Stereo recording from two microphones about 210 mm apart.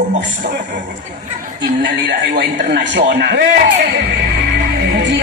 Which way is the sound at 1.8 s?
55° right (ahead or behind).